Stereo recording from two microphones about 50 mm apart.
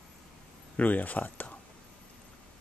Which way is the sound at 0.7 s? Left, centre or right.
Left.